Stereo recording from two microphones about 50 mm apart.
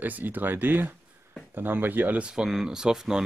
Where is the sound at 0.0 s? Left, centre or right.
Right.